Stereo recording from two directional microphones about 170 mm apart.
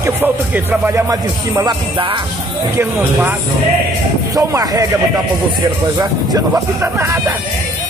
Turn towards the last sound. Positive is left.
turn(degrees=-15)  # may be behind; listen again after turning